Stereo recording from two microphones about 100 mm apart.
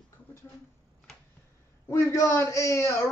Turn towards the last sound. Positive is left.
turn(degrees=30)  # may be behind; listen again after turning